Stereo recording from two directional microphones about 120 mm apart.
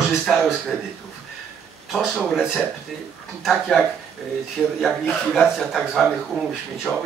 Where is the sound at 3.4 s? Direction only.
Centre (ahead or behind).